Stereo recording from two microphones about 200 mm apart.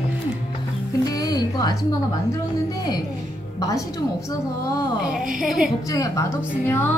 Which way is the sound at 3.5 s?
15° left (ahead or behind).